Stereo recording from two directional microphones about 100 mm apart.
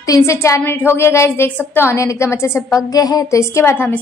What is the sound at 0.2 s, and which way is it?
A woman's voice, 25° left (ahead or behind).